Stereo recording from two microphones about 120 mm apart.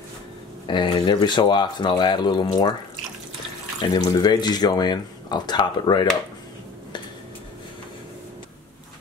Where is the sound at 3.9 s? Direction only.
35° left (ahead or behind).